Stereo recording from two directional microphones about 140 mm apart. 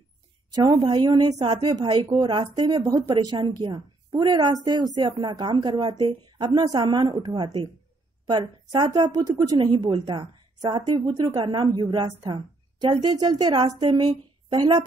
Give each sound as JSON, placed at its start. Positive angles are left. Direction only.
{"t": 0.5, "sound": "a woman's voice", "side_deg": -25}